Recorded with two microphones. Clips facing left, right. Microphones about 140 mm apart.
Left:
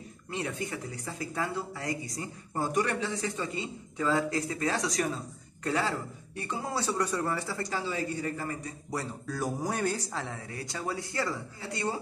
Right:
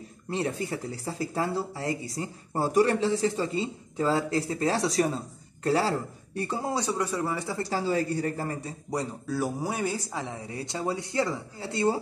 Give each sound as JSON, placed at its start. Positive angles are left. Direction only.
{"t": 0.3, "sound": "speech", "side_deg": -30}
{"t": 6.7, "sound": "a man's voice", "side_deg": -15}
{"t": 7.4, "sound": "speech", "side_deg": -25}
{"t": 8.9, "sound": "speech", "side_deg": -15}